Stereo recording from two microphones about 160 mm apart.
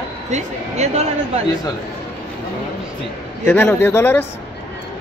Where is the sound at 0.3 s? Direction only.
45° right (ahead or behind).